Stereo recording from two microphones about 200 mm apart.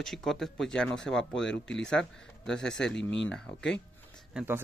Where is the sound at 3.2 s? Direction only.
5° left (ahead or behind).